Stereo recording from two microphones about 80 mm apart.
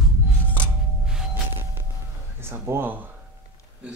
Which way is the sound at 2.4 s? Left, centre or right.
Right.